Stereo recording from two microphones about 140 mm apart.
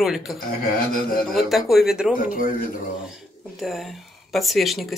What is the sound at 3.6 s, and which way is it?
Speech, centre (ahead or behind).